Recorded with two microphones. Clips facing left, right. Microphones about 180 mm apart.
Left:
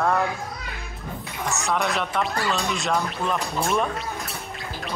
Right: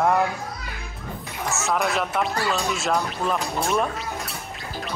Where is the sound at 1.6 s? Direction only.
5° right (ahead or behind).